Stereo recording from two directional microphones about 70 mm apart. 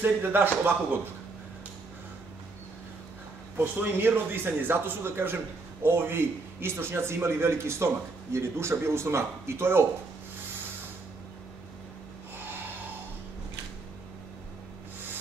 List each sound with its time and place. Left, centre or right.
0.0 s speech: right
3.5 s a man's voice: right